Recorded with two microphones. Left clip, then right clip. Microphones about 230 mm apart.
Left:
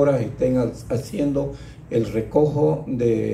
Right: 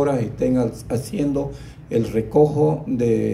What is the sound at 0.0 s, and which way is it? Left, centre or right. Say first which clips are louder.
Speech: left 1 dB; right.